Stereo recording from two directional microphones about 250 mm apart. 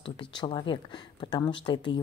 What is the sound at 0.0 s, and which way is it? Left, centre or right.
Speech, centre.